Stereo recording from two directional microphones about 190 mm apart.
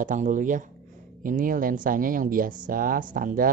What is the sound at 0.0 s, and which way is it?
Speech, 40° right (ahead or behind).